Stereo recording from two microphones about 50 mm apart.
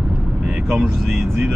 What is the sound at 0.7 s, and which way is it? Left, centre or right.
Speech, centre.